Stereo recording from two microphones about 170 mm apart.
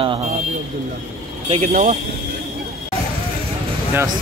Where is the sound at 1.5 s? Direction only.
50° right (ahead or behind).